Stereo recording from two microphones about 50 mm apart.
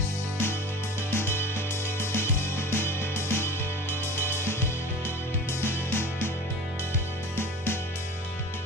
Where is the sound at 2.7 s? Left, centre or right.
Left.